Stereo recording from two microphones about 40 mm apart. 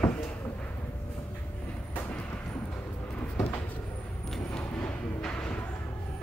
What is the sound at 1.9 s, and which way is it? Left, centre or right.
Vehicle, left.